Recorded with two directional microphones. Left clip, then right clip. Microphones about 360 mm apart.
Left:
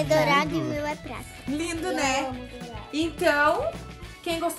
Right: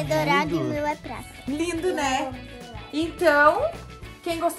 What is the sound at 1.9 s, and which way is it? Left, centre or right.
Speech, centre.